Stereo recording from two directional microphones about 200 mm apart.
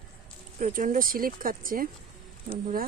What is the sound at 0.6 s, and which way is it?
Speech, 40° right (ahead or behind).